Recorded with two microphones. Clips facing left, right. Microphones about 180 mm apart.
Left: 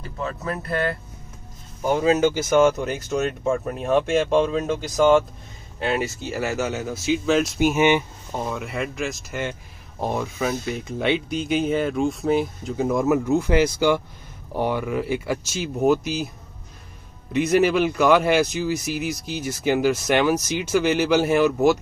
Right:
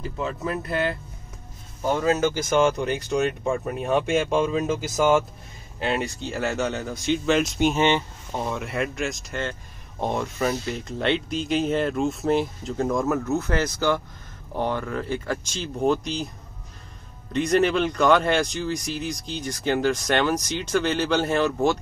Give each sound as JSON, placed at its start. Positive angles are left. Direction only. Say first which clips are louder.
{"t": 0.2, "sound": "speech", "louder": "even", "side_deg": -20}
{"t": 1.9, "sound": "speech", "louder": "left 3 dB", "side_deg": 15}
{"t": 17.3, "sound": "speech", "louder": "left 2 dB", "side_deg": 5}